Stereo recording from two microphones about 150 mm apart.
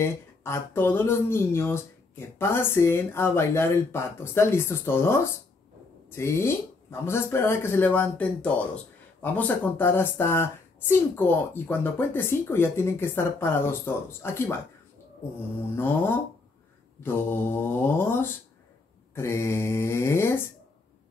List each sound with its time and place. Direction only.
0.0 s speech: 15° left (ahead or behind)
15.7 s speech: 15° left (ahead or behind)